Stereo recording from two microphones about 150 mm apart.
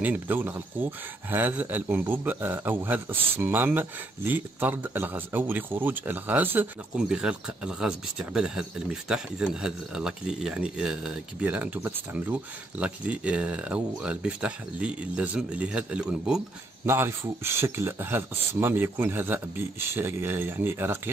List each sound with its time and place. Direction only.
0.0 s speech: 10° right (ahead or behind)
16.8 s speech: 15° right (ahead or behind)